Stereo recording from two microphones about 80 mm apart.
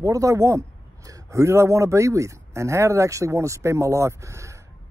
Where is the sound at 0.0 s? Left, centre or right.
Right.